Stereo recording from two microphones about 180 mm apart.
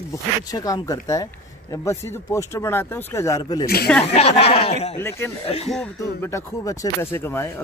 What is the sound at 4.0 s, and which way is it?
Speech, 35° left (ahead or behind).